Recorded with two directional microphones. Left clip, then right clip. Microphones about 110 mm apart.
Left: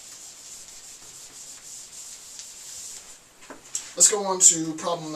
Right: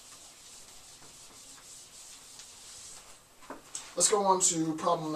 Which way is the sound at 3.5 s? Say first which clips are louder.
Left 7 dB; 5° left (ahead or behind).